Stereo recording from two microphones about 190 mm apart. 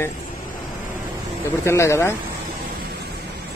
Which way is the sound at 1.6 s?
15° left (ahead or behind).